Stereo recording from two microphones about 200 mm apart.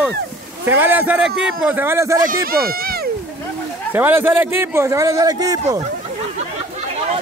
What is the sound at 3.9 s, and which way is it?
Speech, 10° right (ahead or behind).